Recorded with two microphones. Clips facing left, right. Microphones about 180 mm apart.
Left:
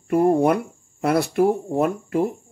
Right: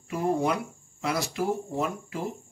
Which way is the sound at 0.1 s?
55° left (ahead or behind).